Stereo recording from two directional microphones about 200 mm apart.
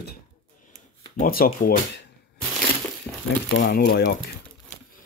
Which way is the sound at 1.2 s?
45° left (ahead or behind).